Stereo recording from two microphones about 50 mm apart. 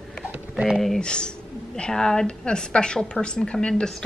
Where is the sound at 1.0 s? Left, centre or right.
Centre.